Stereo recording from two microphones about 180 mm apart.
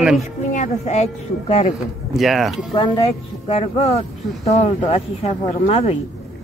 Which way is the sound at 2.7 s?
30° left (ahead or behind).